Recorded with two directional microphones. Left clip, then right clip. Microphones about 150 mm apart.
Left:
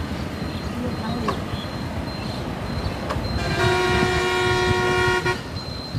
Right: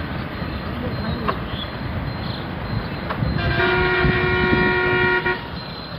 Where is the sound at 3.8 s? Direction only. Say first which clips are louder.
Right 2 dB; 60° left (ahead or behind).